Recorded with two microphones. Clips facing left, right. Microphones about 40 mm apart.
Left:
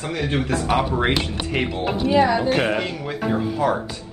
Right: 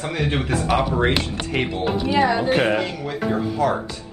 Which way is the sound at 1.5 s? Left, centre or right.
Centre.